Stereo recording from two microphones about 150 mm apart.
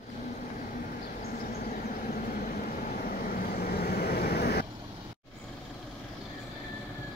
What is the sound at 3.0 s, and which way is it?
Vehicle, 80° left.